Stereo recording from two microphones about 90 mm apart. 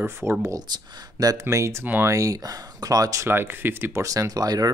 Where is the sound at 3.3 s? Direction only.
25° right (ahead or behind).